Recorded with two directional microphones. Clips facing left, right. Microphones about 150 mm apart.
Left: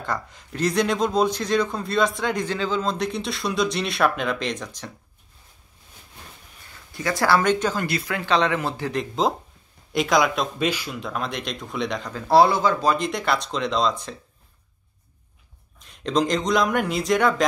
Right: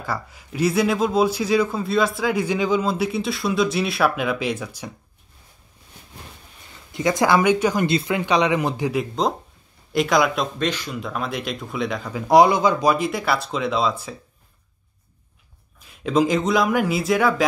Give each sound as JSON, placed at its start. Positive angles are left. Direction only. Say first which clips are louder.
{"t": 0.0, "sound": "speech", "louder": "even", "side_deg": -5}
{"t": 6.9, "sound": "speech", "louder": "right 3 dB", "side_deg": -20}
{"t": 7.8, "sound": "speech", "louder": "right 6 dB", "side_deg": -25}
{"t": 9.9, "sound": "speech", "louder": "right 1 dB", "side_deg": 0}
{"t": 10.7, "sound": "speech", "louder": "even", "side_deg": 10}
{"t": 11.0, "sound": "speech", "louder": "right 2 dB", "side_deg": 0}
{"t": 15.8, "sound": "speech", "louder": "right 3 dB", "side_deg": -5}